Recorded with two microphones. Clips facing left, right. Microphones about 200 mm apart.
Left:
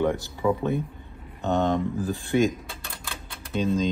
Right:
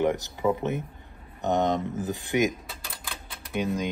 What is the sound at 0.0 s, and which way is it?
Speech, 20° right (ahead or behind).